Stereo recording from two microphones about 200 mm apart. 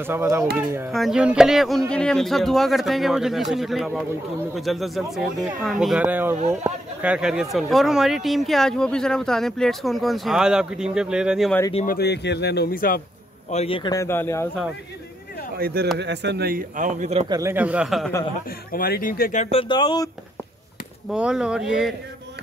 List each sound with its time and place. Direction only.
0.0 s speech: 10° right (ahead or behind)
0.9 s speech: centre (ahead or behind)
11.7 s speech: 45° left (ahead or behind)
13.5 s speech: 30° left (ahead or behind); by 14.5 s 10° left (ahead or behind)
15.5 s speech: 50° right (ahead or behind)
17.3 s speech: 15° right (ahead or behind)
18.7 s speech: 45° left (ahead or behind)
19.7 s speech: 20° left (ahead or behind)
21.1 s speech: 5° right (ahead or behind)